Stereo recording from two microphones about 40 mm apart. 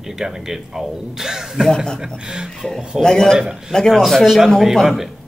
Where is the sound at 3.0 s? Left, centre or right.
Centre.